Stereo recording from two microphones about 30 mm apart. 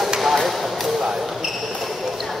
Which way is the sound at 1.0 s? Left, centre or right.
Centre.